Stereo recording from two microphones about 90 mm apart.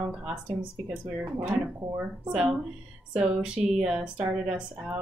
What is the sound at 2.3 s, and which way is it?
Speech, 10° right (ahead or behind).